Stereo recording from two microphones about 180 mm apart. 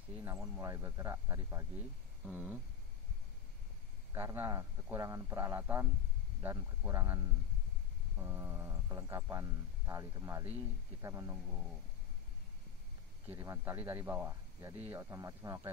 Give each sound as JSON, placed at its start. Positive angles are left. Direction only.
{"t": 0.1, "sound": "speech", "side_deg": -15}
{"t": 4.1, "sound": "speech", "side_deg": -15}
{"t": 13.3, "sound": "speech", "side_deg": -15}